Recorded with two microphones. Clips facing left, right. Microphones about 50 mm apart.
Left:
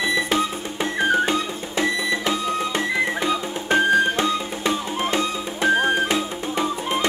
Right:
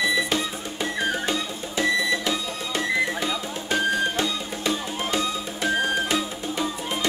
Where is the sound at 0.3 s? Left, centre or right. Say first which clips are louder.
Left 4 dB; left.